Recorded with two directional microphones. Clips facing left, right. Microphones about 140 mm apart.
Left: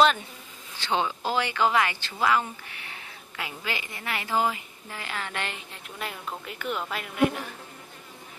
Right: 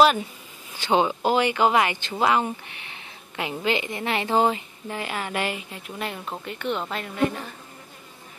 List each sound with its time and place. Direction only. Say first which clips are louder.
0.7 s a woman's voice: right 6 dB; 15° right (ahead or behind); by 7.3 s 5° left (ahead or behind)